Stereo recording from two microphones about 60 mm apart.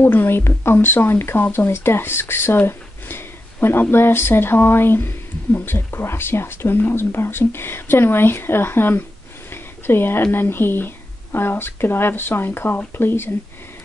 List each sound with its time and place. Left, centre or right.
0.0 s speech: left
9.5 s a sound: left
10.3 s speech: left